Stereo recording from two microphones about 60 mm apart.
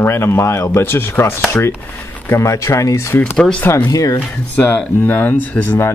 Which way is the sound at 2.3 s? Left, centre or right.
Left.